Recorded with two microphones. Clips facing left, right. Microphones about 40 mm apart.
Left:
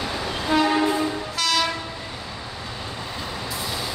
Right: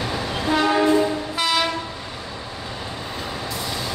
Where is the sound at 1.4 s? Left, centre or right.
Centre.